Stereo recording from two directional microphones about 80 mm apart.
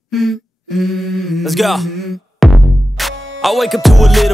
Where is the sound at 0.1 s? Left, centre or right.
Centre.